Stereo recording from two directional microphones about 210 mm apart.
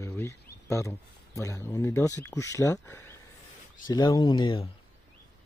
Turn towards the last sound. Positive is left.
turn(degrees=20)  # may be behind; listen again after turning